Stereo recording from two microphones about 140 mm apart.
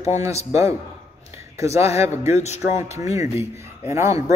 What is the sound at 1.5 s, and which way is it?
Music, 20° right (ahead or behind).